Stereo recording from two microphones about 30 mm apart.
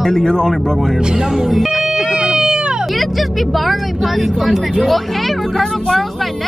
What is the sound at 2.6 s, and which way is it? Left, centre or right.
Vehicle, right.